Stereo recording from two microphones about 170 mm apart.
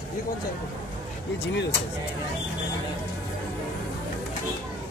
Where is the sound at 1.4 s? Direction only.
90° left.